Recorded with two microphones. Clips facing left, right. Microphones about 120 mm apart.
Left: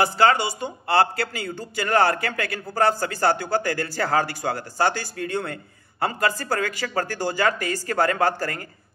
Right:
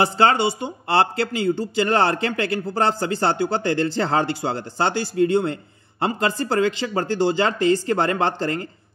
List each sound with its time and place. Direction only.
0.0 s a man's voice: 25° right (ahead or behind)